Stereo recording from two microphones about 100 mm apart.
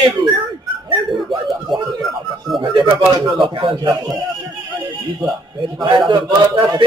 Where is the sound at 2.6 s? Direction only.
55° right (ahead or behind).